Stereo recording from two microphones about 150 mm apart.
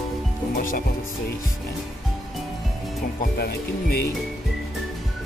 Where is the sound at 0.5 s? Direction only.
65° left (ahead or behind).